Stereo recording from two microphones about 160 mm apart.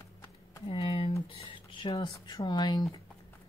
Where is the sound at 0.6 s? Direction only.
40° left (ahead or behind); by 3.0 s 25° left (ahead or behind).